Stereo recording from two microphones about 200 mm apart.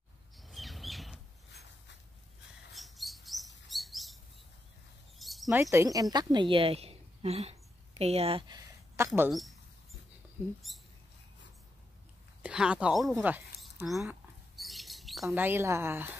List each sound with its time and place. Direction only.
0.4 s squawk: centre (ahead or behind)
2.7 s rodents: centre (ahead or behind)
3.6 s chirp: centre (ahead or behind)
5.2 s a sound: centre (ahead or behind)
5.6 s a woman's voice: 15° right (ahead or behind)
8.9 s a sound: 10° right (ahead or behind)
10.7 s speech: centre (ahead or behind)
12.4 s speech: 5° right (ahead or behind)
13.8 s rodents: centre (ahead or behind)
15.2 s speech: 10° right (ahead or behind)